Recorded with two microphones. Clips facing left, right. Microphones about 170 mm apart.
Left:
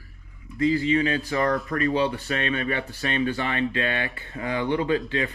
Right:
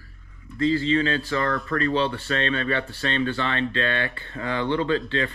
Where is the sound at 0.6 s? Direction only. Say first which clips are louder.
Even; 15° left (ahead or behind).